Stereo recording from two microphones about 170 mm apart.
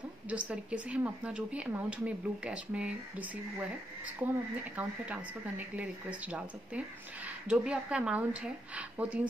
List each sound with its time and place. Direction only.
0.3 s speech: 10° right (ahead or behind)